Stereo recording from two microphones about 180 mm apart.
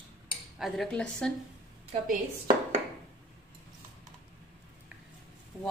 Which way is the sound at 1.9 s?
35° right (ahead or behind).